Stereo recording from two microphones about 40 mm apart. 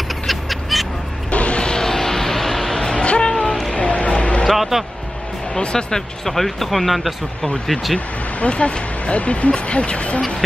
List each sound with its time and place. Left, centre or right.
0.3 s duck: centre
1.3 s music: left; by 2.7 s centre
2.7 s music: centre
3.7 s music: left
4.5 s music: centre
5.6 s speech: left; by 7.2 s centre
8.4 s speech: left